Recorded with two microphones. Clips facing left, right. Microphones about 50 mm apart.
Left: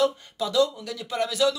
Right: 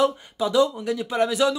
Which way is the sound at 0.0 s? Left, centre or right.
Centre.